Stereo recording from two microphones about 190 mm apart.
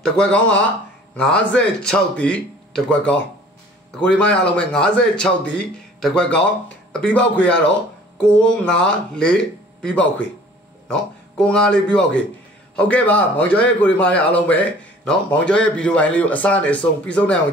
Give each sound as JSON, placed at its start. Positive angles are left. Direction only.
{"t": 0.0, "sound": "a man's voice", "side_deg": 5}